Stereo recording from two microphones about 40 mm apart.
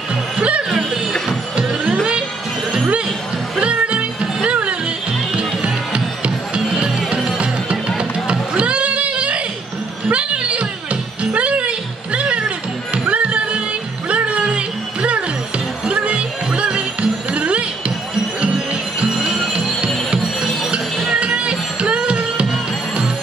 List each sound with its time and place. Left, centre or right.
0.4 s music: right
0.7 s music: centre
3.6 s music: right
21.2 s music: right